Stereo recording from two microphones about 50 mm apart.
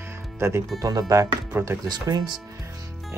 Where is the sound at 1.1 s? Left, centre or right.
Right.